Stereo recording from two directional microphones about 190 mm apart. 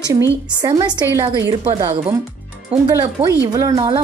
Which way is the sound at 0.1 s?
20° right (ahead or behind).